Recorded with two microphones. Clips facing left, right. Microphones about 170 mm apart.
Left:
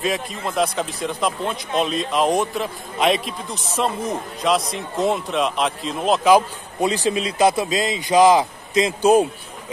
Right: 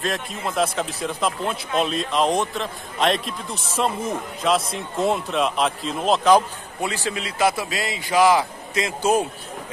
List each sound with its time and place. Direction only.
0.0 s a man's voice: centre (ahead or behind)
6.8 s a man's voice: 20° left (ahead or behind)